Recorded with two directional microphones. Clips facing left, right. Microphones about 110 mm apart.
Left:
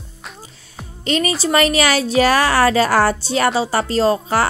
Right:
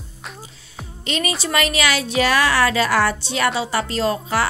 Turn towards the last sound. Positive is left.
turn(degrees=40)  # may be behind; listen again after turning